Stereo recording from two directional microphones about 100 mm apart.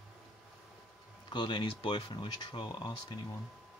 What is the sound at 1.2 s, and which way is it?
Speech, 50° left (ahead or behind).